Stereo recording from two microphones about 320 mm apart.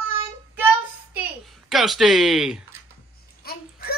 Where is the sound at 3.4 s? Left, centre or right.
Left.